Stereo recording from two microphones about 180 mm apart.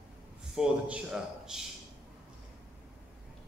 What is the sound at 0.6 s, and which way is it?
A man's voice, 5° right (ahead or behind).